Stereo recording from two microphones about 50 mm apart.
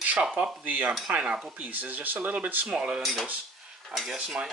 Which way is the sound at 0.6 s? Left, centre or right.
Right.